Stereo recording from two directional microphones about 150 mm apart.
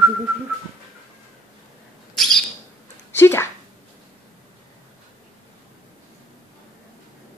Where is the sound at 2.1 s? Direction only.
Centre (ahead or behind).